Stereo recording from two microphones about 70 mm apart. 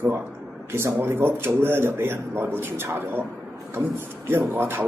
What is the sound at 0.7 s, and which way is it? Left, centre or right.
A man's voice, right.